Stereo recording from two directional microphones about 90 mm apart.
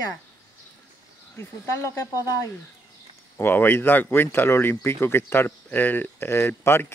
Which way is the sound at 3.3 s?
20° left (ahead or behind).